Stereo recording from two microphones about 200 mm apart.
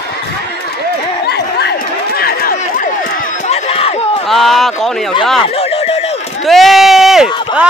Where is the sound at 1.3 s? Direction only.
55° left (ahead or behind).